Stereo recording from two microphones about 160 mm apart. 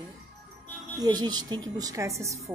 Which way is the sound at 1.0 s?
25° right (ahead or behind).